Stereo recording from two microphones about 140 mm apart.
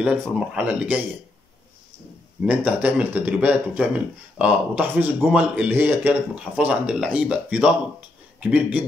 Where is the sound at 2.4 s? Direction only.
10° right (ahead or behind).